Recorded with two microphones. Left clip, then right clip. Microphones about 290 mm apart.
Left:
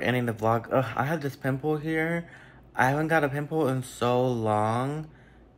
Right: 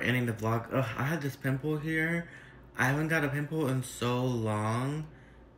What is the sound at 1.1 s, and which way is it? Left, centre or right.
Speech, centre.